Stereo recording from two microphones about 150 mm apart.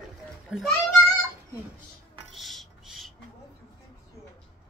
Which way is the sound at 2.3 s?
Centre (ahead or behind).